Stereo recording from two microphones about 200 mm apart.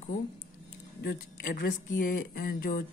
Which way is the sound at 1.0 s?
50° left (ahead or behind).